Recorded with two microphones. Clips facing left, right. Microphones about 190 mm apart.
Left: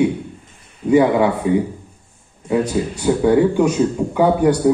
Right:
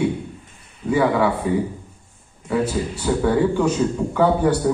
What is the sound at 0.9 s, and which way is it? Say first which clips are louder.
Speech: left 5 dB; 20° left (ahead or behind).